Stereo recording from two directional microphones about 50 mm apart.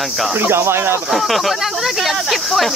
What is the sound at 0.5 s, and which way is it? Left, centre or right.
Speech, right.